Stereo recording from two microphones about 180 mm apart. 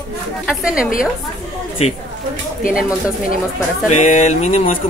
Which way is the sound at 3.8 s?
40° left (ahead or behind).